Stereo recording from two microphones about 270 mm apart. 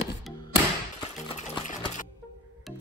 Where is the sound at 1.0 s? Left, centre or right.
Left.